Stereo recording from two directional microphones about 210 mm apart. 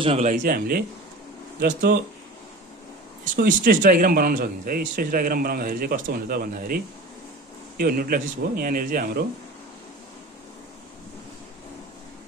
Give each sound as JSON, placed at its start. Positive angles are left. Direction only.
{"t": 0.0, "sound": "speech", "side_deg": -25}
{"t": 0.3, "sound": "a man's voice", "side_deg": -40}
{"t": 3.3, "sound": "a man's voice", "side_deg": -40}